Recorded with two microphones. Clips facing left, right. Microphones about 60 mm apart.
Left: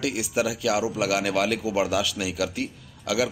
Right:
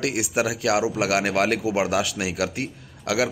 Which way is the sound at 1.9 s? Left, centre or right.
Right.